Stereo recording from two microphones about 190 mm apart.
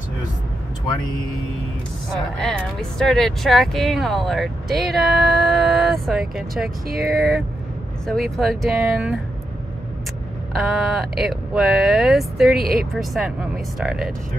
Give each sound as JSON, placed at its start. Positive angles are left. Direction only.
{"t": 2.0, "sound": "speech", "side_deg": 5}
{"t": 6.9, "sound": "speech", "side_deg": -55}
{"t": 8.1, "sound": "speech", "side_deg": 0}
{"t": 10.5, "sound": "speech", "side_deg": 0}